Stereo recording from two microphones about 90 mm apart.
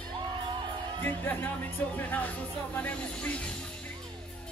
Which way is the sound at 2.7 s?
15° left (ahead or behind).